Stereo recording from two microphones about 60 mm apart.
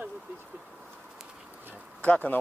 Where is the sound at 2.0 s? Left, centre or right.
Left.